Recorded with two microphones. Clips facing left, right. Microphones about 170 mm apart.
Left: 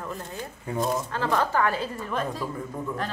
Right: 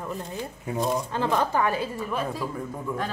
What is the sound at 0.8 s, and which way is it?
Speech, centre (ahead or behind).